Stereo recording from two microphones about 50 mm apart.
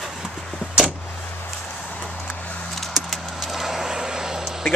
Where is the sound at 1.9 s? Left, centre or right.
Left.